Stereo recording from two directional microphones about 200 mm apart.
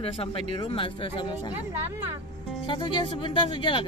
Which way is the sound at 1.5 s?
10° right (ahead or behind).